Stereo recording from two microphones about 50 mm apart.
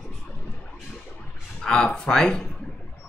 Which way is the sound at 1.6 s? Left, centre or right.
Centre.